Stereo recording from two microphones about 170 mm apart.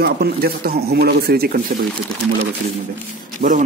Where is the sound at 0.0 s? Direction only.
65° right (ahead or behind).